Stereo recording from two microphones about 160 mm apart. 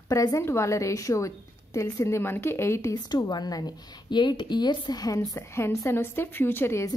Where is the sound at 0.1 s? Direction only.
20° left (ahead or behind).